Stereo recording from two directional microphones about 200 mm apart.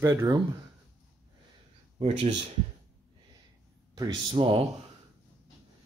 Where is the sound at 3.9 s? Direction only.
20° right (ahead or behind).